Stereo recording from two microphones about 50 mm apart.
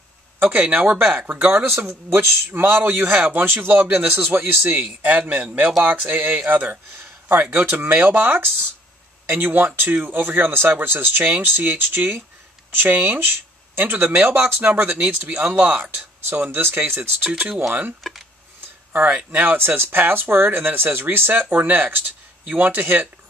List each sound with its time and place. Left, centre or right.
0.4 s speech: right
0.9 s speech: right
2.1 s speech: right
5.7 s speech: centre
6.0 s speech: right
16.4 s speech: right
18.0 s speech: centre
18.9 s speech: right